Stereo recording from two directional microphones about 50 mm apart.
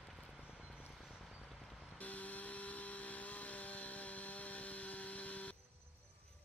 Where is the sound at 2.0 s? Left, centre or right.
Left.